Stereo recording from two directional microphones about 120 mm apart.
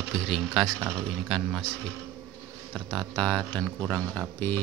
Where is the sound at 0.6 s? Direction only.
Centre (ahead or behind).